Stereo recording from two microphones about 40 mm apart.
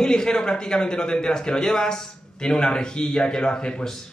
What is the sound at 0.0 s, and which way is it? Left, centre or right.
A man's voice, centre.